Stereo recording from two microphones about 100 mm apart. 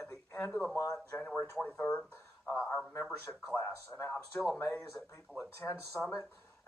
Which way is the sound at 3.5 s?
25° left (ahead or behind).